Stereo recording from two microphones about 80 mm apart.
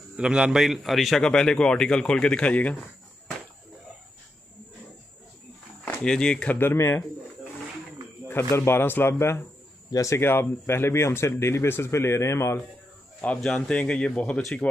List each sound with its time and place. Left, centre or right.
0.2 s a man's voice: centre
6.0 s speech: centre; by 7.1 s left
8.5 s speech: left
9.8 s speech: left
13.4 s a man's voice: centre